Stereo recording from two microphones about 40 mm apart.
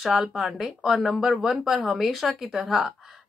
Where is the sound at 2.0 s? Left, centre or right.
Centre.